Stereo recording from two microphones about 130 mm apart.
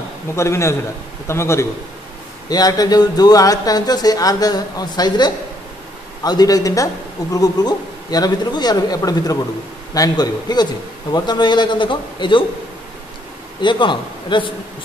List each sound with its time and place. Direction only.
0.4 s a man's voice: 20° left (ahead or behind); by 12.4 s 40° left (ahead or behind)
13.6 s a man's voice: 35° left (ahead or behind)